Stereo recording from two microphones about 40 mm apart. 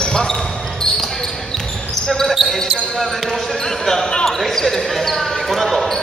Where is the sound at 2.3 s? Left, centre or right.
Centre.